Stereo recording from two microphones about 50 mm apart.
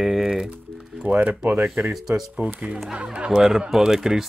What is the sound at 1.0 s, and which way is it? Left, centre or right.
Speech, right.